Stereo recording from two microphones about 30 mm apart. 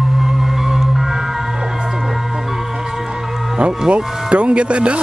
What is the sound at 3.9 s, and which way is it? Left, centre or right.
Speech, right.